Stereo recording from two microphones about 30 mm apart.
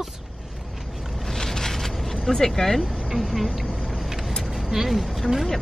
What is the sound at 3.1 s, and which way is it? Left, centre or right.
Vehicle, centre.